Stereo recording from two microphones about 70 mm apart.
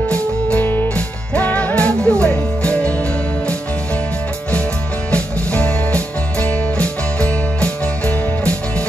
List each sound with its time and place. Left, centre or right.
0.1 s music: centre
5.1 s music: centre